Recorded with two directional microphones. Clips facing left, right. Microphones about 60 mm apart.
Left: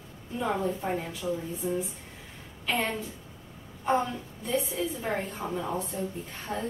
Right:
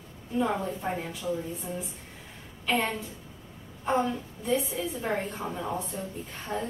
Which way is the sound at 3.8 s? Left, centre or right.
Centre.